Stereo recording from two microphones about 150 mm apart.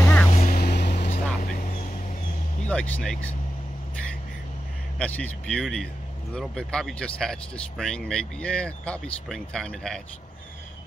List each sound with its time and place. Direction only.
0.0 s vehicle: 15° left (ahead or behind)
0.3 s vehicle: 65° left (ahead or behind)
1.4 s vehicle: 65° left (ahead or behind)
2.6 s speech: 10° left (ahead or behind)
4.9 s speech: 10° left (ahead or behind)